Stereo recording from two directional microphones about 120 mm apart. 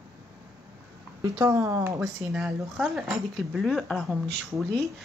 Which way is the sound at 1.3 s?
25° right (ahead or behind).